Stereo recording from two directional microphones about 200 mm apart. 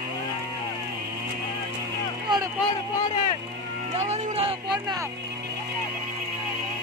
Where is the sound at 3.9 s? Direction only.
35° right (ahead or behind).